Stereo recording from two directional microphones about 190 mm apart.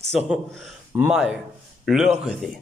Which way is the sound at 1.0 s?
5° right (ahead or behind).